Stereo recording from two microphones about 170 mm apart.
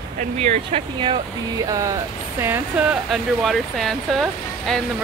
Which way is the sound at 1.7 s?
20° right (ahead or behind).